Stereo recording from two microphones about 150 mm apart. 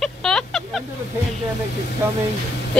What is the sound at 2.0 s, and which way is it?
Speech, 15° right (ahead or behind).